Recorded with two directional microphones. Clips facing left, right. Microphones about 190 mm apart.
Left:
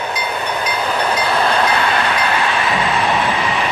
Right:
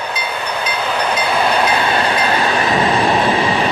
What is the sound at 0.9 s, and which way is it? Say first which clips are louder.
Train: even; 5° left (ahead or behind).